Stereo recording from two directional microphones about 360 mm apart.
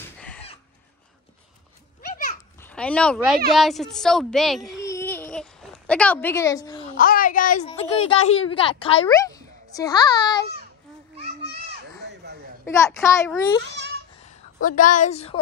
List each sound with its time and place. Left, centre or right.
0.2 s chicken: centre
2.6 s a child's voice: centre
7.0 s a woman's voice: left
12.6 s a child's voice: centre
14.6 s a woman's voice: left